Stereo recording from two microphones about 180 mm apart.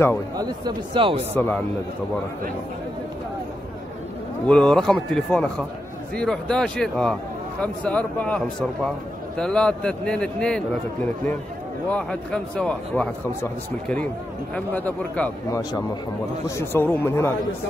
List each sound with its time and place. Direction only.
0.4 s speech: 25° right (ahead or behind)
1.3 s a man's voice: 10° left (ahead or behind)
4.5 s a man's voice: 5° left (ahead or behind)